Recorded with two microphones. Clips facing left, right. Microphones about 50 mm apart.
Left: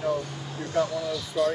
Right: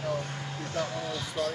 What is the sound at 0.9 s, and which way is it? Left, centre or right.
Speech, right.